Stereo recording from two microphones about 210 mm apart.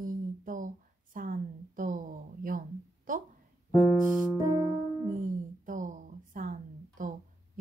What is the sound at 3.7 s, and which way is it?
Music, centre (ahead or behind).